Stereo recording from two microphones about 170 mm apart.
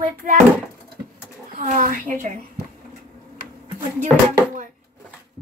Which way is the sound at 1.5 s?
50° right (ahead or behind).